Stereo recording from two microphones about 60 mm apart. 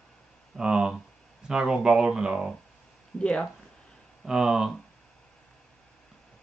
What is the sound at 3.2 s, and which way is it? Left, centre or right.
Speech, centre.